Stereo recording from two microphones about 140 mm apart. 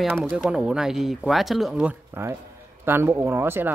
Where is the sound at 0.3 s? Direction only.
5° right (ahead or behind).